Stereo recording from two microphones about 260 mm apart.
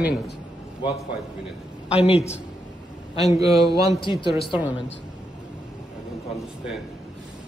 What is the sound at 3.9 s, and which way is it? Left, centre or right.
Speech, centre.